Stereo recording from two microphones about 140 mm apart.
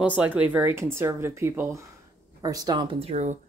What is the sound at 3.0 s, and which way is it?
Speech, 50° right (ahead or behind).